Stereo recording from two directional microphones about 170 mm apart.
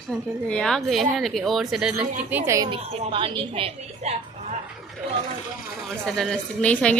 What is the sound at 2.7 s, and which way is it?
A woman's voice, 30° right (ahead or behind).